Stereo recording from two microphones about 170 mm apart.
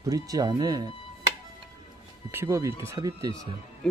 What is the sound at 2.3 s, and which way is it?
Speech, 15° right (ahead or behind).